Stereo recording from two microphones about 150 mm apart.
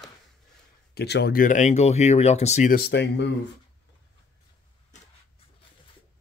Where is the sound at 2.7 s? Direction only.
90° left.